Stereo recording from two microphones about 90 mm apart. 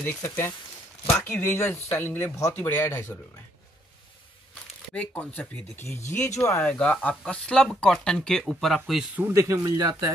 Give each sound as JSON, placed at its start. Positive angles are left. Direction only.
{"t": 0.0, "sound": "speech", "side_deg": 25}
{"t": 4.9, "sound": "speech", "side_deg": 15}
{"t": 5.9, "sound": "speech", "side_deg": 35}
{"t": 6.6, "sound": "speech", "side_deg": 15}
{"t": 9.3, "sound": "speech", "side_deg": -35}